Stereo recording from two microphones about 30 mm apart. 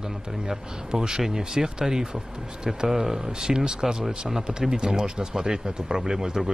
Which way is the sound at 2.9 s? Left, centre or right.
Centre.